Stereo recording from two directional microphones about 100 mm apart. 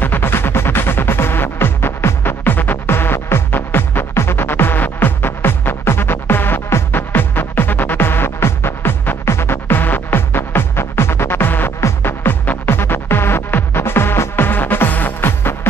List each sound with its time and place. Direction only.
0.0 s music: 20° left (ahead or behind)